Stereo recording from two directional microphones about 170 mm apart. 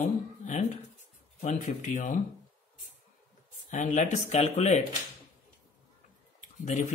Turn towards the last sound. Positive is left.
turn(degrees=45)  # may be behind; listen again after turning